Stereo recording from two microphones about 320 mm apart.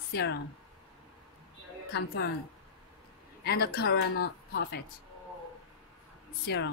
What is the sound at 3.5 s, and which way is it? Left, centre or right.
A woman's voice, left.